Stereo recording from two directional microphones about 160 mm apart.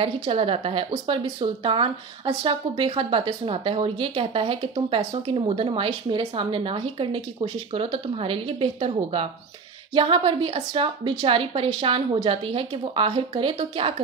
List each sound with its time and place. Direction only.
0.0 s speech: 35° right (ahead or behind)